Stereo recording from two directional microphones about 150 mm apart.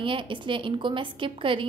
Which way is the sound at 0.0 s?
35° right (ahead or behind).